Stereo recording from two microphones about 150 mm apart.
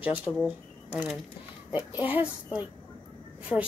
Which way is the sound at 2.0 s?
10° right (ahead or behind).